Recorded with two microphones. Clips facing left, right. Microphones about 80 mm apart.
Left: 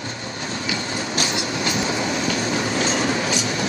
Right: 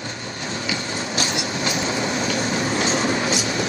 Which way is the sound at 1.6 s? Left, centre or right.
Right.